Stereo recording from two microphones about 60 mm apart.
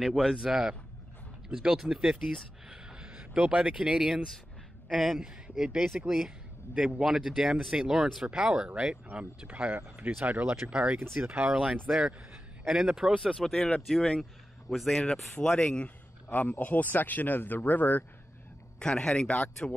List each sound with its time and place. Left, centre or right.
0.4 s speech: centre
2.7 s a sound: centre
3.3 s speech: right
4.9 s speech: centre
9.1 s speech: right
11.1 s speech: right
11.4 s speech: centre
13.1 s speech: centre
15.3 s speech: centre
16.3 s speech: left
18.8 s speech: centre